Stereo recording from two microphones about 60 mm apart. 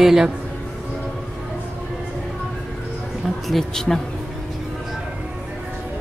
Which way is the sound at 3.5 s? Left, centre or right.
Centre.